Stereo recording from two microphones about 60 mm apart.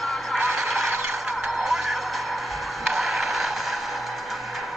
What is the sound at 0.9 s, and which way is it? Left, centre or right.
Music, right.